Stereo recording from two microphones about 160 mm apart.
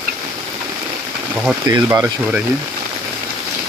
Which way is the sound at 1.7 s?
15° right (ahead or behind).